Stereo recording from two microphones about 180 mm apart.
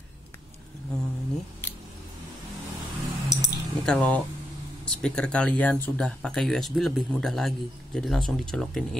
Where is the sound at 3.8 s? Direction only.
5° left (ahead or behind).